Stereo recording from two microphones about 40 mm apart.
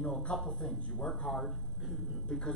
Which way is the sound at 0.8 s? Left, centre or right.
Left.